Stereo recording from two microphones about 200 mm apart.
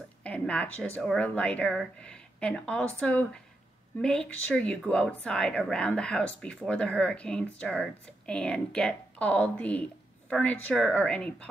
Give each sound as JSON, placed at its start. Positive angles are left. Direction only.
{"t": 0.2, "sound": "a woman's voice", "side_deg": 5}